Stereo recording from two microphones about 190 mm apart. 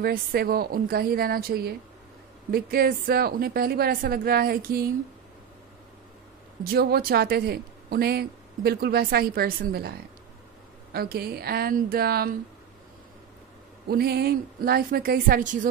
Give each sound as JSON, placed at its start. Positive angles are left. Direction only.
{"t": 0.0, "sound": "a woman's voice", "side_deg": -55}
{"t": 6.6, "sound": "a woman's voice", "side_deg": -55}
{"t": 13.8, "sound": "a woman's voice", "side_deg": -55}